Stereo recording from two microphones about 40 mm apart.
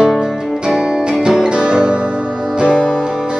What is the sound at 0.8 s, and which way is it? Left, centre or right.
Music, centre.